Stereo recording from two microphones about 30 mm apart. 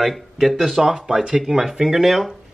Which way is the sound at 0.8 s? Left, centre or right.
Centre.